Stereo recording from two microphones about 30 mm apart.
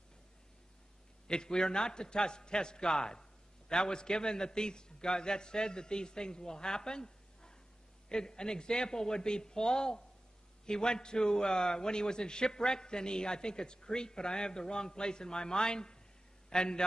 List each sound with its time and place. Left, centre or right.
1.2 s a man's voice: left